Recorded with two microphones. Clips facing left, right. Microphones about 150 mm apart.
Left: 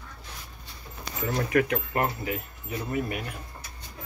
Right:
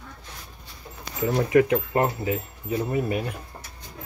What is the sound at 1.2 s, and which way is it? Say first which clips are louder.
Speech: right 5 dB; 20° right (ahead or behind).